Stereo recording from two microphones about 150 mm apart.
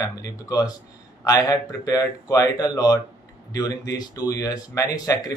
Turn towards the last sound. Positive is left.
turn(degrees=25)  # may be behind; listen again after turning